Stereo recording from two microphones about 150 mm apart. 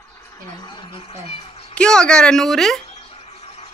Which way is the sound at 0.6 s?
35° left (ahead or behind).